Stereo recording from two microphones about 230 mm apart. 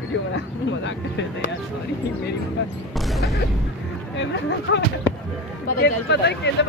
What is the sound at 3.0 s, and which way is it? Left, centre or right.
Creak, centre.